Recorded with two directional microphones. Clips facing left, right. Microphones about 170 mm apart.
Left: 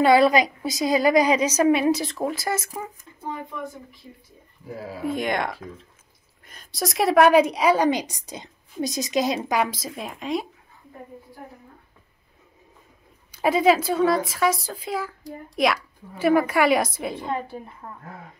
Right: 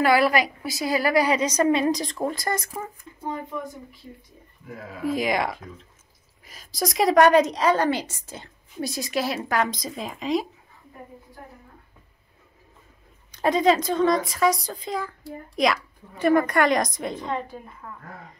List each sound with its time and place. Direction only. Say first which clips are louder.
0.0 s a woman's voice: left 3 dB; 25° left (ahead or behind); by 2.9 s 5° left (ahead or behind)
4.6 s speech: left 4 dB; 30° left (ahead or behind)
5.0 s a woman's voice: right 1 dB; centre (ahead or behind)
13.3 s a woman's voice: left 1 dB; 5° left (ahead or behind)
17.8 s speech: left 1 dB; 35° left (ahead or behind)